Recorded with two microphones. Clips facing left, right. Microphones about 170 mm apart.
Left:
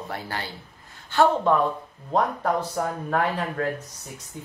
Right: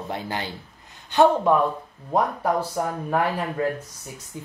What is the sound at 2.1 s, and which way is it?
Speech, 5° right (ahead or behind).